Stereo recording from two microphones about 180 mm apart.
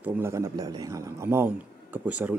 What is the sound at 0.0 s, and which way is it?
A man's voice, 15° right (ahead or behind).